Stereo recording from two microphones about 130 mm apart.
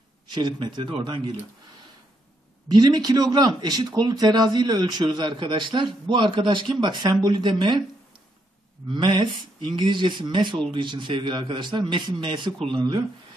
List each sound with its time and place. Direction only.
0.3 s a man's voice: 35° right (ahead or behind)
2.7 s a man's voice: 30° right (ahead or behind)
8.8 s a man's voice: 35° right (ahead or behind)